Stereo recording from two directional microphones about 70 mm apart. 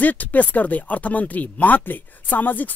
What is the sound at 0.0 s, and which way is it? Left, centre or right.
Speech, left.